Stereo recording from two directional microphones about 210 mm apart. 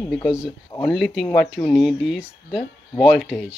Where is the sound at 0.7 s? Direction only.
15° left (ahead or behind).